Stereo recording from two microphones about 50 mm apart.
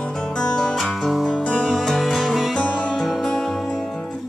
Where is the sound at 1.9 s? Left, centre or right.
Centre.